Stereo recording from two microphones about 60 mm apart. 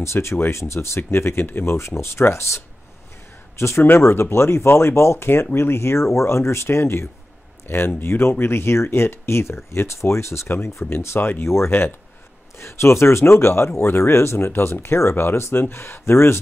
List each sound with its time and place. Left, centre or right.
0.0 s speech: left
11.1 s speech: left
11.4 s speech: left